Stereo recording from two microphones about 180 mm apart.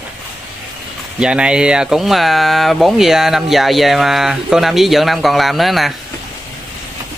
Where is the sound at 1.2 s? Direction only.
5° right (ahead or behind).